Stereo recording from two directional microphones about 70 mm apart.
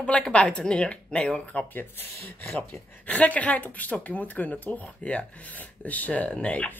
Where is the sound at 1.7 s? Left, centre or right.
Left.